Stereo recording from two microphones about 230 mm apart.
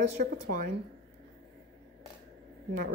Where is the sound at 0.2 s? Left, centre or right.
Right.